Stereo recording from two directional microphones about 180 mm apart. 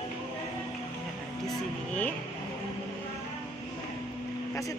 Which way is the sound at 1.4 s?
5° left (ahead or behind).